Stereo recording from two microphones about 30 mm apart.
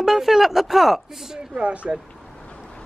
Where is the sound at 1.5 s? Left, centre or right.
Right.